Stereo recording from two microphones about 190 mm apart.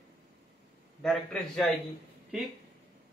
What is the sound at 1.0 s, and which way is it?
Speech, 5° left (ahead or behind).